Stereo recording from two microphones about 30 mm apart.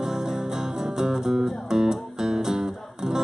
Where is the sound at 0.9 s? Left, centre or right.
Centre.